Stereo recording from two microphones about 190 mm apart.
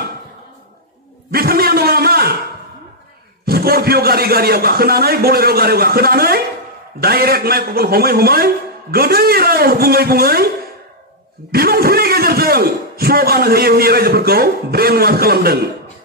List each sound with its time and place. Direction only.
1.3 s a sound: 55° right (ahead or behind)
3.4 s a man's voice: 55° right (ahead or behind)
11.5 s a man's voice: 55° right (ahead or behind)